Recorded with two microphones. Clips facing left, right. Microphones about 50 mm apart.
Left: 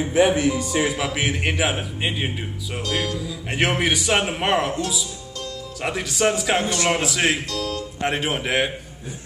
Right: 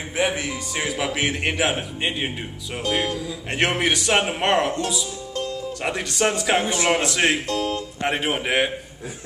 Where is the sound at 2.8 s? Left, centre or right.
Right.